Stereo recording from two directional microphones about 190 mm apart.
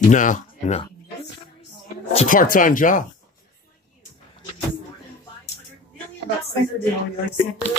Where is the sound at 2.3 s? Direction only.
45° left (ahead or behind).